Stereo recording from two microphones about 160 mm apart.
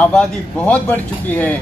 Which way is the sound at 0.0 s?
10° left (ahead or behind).